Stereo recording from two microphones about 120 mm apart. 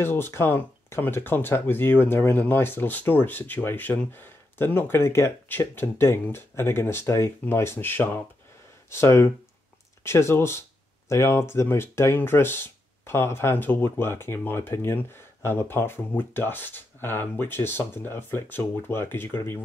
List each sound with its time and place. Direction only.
0.0 s speech: 20° left (ahead or behind)